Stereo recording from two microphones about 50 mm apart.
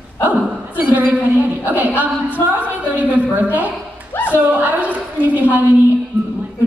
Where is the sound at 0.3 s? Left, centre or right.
Right.